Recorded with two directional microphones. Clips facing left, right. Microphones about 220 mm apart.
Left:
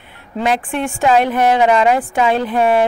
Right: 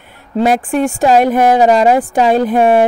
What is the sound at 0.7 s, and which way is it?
A woman's voice, 40° right (ahead or behind).